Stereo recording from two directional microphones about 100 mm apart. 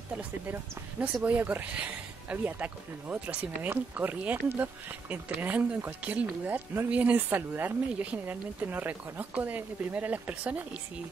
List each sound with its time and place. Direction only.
0.5 s speech: 15° right (ahead or behind)